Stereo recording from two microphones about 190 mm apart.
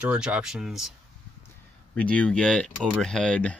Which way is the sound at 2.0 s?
5° left (ahead or behind).